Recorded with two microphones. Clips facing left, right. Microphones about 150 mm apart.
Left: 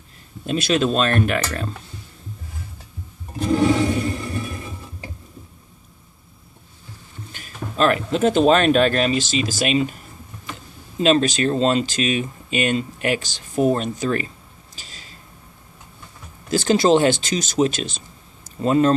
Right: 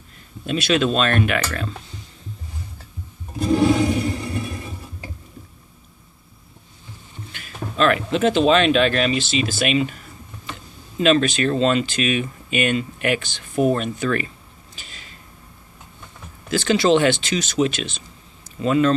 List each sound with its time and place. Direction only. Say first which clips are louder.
0.5 s speech: even; 40° left (ahead or behind)
3.5 s a sound: right 1 dB; 5° right (ahead or behind)
7.3 s speech: even; 40° left (ahead or behind)
11.0 s speech: even; 35° left (ahead or behind)
14.8 s a sound: even; 35° left (ahead or behind)
16.4 s speech: left 1 dB; 45° left (ahead or behind)